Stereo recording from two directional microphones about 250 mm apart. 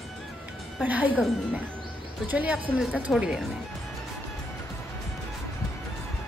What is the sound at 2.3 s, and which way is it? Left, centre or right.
A woman's voice, centre.